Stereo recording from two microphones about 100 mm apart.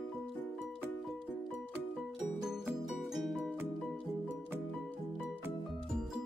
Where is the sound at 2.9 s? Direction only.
5° right (ahead or behind).